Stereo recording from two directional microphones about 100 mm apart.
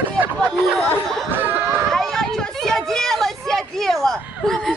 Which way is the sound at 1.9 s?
5° left (ahead or behind).